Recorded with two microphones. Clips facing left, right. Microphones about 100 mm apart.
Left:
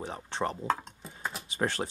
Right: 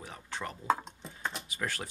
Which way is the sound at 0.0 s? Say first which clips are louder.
Left 7 dB; 30° left (ahead or behind).